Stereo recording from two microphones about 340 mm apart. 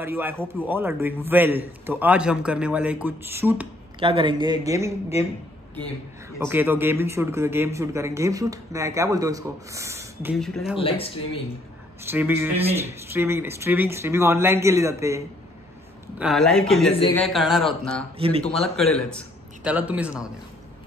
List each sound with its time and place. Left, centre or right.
0.0 s a man's voice: centre
6.4 s speech: centre
10.8 s speech: centre
12.1 s a man's voice: centre
12.5 s speech: centre
13.1 s a man's voice: centre
16.9 s speech: centre
17.2 s a man's voice: centre
18.1 s speech: centre
18.4 s a man's voice: centre